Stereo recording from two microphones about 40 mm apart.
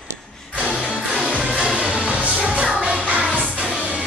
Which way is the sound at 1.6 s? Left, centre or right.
Right.